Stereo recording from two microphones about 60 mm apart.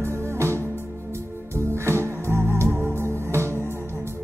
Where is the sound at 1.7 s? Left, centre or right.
Right.